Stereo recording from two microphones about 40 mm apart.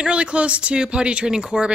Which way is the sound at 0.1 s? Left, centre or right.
Right.